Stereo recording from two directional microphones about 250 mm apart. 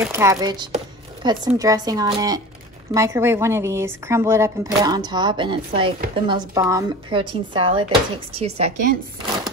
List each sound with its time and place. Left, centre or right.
0.0 s speech: centre